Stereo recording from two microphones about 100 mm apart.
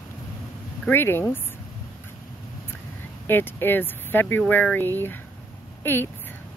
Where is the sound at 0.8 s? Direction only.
25° left (ahead or behind).